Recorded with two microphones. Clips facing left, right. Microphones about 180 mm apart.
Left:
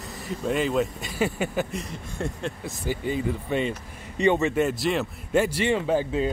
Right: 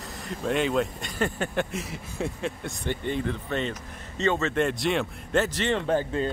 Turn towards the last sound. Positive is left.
turn(degrees=5)  # may be behind; listen again after turning